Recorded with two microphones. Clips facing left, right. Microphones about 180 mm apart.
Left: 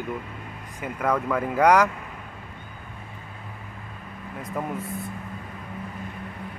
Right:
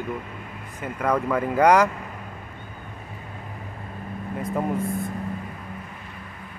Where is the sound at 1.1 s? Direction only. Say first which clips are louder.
Right 4 dB; centre (ahead or behind).